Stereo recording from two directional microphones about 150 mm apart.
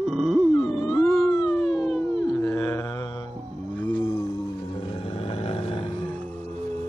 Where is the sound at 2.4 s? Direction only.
20° left (ahead or behind).